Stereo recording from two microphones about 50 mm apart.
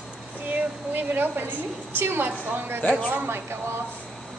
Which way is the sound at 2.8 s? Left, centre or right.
Left.